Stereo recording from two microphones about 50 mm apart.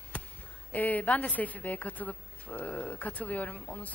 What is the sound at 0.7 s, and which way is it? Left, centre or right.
A woman's voice, left.